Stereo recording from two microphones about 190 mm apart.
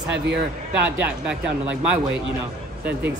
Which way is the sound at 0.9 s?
10° right (ahead or behind).